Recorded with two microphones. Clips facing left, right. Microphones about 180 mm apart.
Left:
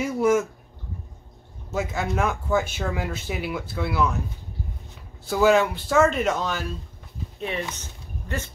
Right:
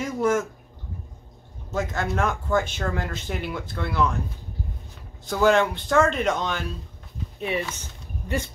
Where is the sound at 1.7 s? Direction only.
10° left (ahead or behind).